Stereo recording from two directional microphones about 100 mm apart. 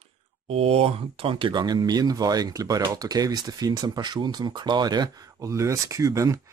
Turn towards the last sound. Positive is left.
turn(degrees=-35)  # may be behind; listen again after turning